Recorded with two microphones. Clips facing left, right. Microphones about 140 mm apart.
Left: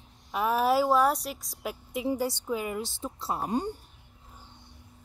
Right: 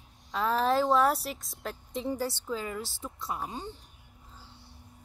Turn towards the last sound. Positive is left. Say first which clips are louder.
# left 1 dB
turn(degrees=15)  # may be behind; listen again after turning